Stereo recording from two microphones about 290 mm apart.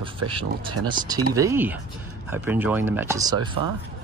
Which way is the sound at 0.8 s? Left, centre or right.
Centre.